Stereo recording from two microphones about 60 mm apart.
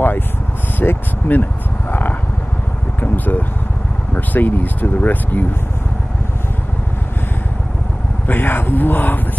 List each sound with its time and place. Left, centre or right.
0.7 s vehicle: left
3.0 s speech: left
8.3 s speech: left